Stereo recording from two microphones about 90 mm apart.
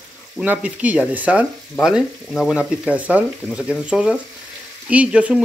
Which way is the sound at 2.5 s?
15° right (ahead or behind).